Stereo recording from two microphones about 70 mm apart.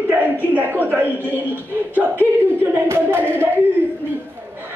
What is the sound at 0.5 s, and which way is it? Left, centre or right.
Speech, right.